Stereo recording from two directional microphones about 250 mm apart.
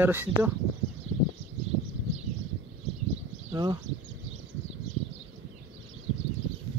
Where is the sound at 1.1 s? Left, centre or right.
Right.